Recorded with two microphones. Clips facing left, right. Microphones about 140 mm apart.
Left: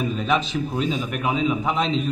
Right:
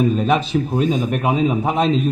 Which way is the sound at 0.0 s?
45° right (ahead or behind).